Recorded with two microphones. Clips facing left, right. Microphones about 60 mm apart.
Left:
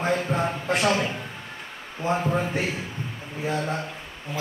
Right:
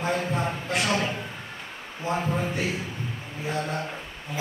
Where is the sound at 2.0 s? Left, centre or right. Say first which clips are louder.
Left 3 dB; left.